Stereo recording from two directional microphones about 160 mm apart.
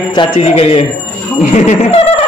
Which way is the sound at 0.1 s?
30° left (ahead or behind).